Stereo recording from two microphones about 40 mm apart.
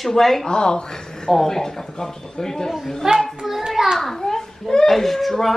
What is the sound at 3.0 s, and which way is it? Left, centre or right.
Speech, centre.